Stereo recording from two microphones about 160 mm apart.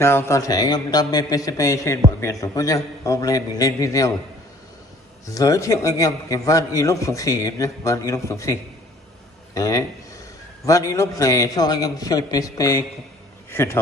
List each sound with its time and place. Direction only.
0.0 s a man's voice: 15° left (ahead or behind)
5.2 s a man's voice: 20° left (ahead or behind)